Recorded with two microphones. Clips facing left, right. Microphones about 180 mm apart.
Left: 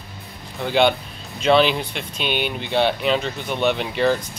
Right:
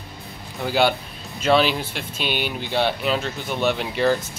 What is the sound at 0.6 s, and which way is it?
Speech, 5° right (ahead or behind).